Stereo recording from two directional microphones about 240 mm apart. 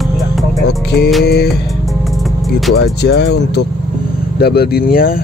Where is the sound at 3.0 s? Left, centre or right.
Left.